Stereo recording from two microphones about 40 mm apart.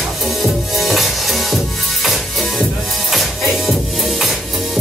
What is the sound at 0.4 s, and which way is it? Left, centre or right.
Music, centre.